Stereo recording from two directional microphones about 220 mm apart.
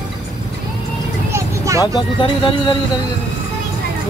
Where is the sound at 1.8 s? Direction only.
20° left (ahead or behind).